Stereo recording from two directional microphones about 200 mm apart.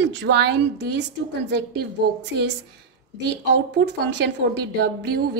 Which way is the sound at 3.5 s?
60° right (ahead or behind).